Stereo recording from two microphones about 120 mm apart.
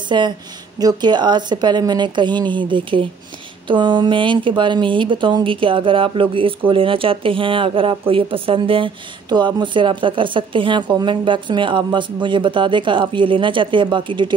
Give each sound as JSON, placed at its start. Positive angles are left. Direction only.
{"t": 0.1, "sound": "speech", "side_deg": -40}